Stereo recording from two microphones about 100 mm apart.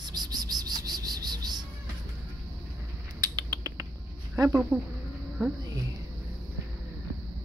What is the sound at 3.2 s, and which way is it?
Rodents, 40° right (ahead or behind).